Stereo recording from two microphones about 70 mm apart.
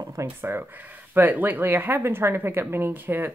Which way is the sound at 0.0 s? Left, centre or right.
Right.